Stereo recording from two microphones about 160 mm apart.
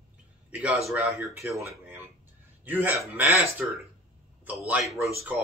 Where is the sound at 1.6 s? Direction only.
15° right (ahead or behind).